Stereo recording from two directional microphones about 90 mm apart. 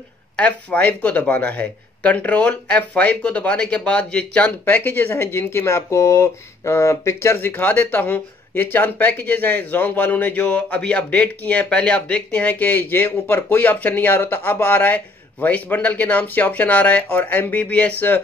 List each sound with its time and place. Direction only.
0.4 s speech: 15° left (ahead or behind)